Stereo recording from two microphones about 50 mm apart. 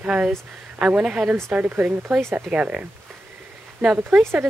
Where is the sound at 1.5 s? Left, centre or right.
Right.